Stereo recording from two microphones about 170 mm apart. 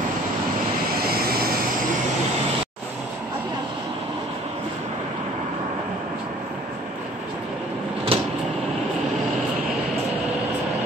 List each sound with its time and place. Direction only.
0.9 s vehicle: 60° right (ahead or behind)
8.1 s vehicle: 35° right (ahead or behind)